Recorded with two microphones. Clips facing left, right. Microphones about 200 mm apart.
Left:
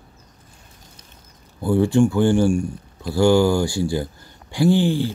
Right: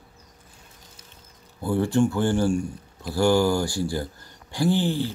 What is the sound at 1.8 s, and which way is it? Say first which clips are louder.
Speech: left 5 dB; 15° left (ahead or behind).